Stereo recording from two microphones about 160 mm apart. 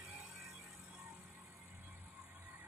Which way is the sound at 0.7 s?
10° right (ahead or behind).